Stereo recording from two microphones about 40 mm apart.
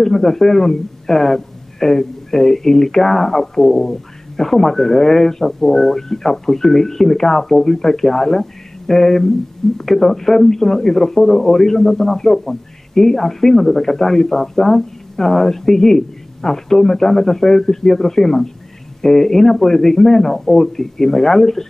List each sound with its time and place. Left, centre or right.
0.0 s a man's voice: centre